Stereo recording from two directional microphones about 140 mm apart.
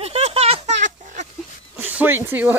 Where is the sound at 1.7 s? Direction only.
15° right (ahead or behind).